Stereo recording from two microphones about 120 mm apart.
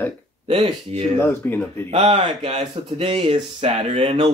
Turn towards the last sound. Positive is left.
turn(degrees=-55)  # may be behind; listen again after turning